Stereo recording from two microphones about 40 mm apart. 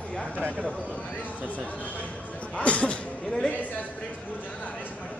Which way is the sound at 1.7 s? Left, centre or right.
Left.